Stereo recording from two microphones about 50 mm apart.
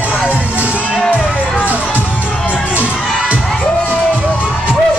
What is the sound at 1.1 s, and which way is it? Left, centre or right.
Music, right.